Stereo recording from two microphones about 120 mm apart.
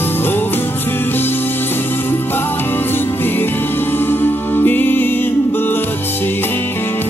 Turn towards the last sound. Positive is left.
turn(degrees=15)  # may be behind; listen again after turning